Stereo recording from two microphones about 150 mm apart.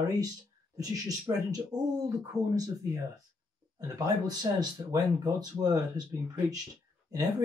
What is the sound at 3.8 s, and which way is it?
Speech, 25° right (ahead or behind).